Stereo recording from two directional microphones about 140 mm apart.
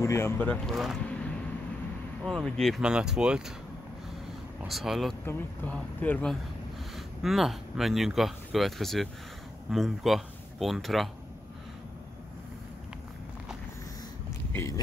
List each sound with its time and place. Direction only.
0.0 s speech: 20° left (ahead or behind)
0.4 s speech: 5° left (ahead or behind)
4.6 s speech: centre (ahead or behind)
5.2 s speech: 15° left (ahead or behind)
7.2 s speech: centre (ahead or behind)
14.5 s a sound: 20° left (ahead or behind)